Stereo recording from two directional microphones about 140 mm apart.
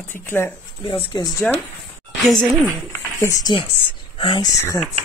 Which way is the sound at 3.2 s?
25° left (ahead or behind).